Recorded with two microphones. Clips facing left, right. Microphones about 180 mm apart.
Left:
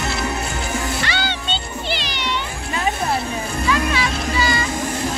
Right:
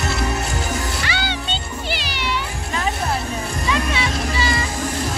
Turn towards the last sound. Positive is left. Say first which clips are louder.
# left 1 dB
turn(degrees=-25)  # may be behind; listen again after turning